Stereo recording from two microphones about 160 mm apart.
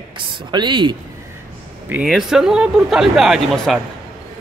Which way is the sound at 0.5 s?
30° right (ahead or behind).